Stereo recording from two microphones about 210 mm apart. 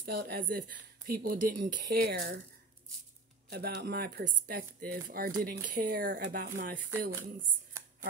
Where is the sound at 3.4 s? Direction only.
50° right (ahead or behind).